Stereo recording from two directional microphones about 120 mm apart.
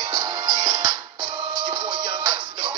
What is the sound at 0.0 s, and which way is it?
Music, 35° right (ahead or behind).